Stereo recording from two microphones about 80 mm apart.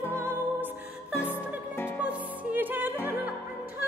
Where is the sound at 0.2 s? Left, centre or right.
Right.